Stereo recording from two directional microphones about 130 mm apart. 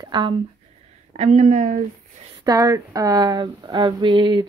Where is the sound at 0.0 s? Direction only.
35° right (ahead or behind).